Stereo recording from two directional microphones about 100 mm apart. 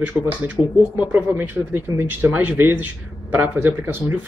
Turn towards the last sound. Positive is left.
turn(degrees=-20)  # may be behind; listen again after turning